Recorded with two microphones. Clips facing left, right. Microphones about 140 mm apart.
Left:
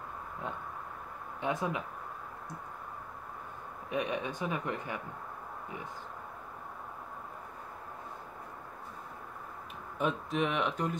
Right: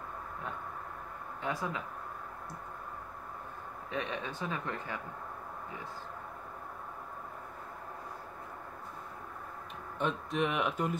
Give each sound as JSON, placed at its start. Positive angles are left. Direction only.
{"t": 1.4, "sound": "speech", "side_deg": 20}
{"t": 3.9, "sound": "speech", "side_deg": 15}
{"t": 9.9, "sound": "speech", "side_deg": 5}